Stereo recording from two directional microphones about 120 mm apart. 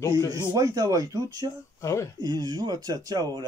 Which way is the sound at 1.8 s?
25° left (ahead or behind).